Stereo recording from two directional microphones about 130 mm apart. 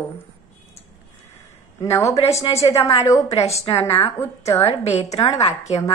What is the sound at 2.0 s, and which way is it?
A woman's voice, 55° left (ahead or behind).